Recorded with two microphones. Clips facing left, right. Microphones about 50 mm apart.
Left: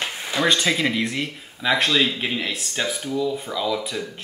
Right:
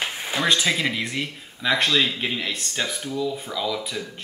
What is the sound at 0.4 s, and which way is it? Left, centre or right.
Speech, centre.